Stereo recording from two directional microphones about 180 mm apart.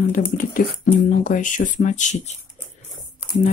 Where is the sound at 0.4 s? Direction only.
50° left (ahead or behind).